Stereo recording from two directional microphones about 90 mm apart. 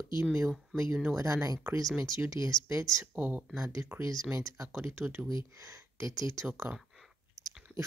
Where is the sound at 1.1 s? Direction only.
35° right (ahead or behind).